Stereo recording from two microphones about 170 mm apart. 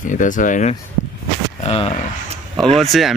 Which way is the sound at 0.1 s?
50° left (ahead or behind).